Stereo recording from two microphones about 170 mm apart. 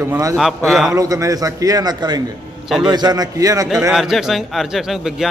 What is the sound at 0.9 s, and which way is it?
A man's voice, 20° right (ahead or behind).